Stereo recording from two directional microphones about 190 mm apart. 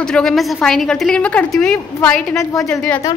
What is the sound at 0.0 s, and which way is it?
A woman's voice, 5° left (ahead or behind).